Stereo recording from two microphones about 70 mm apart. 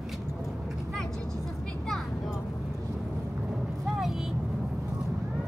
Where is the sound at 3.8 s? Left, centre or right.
Centre.